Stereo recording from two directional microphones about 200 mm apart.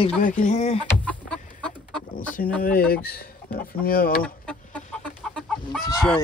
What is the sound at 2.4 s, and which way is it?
Speech, 45° left (ahead or behind).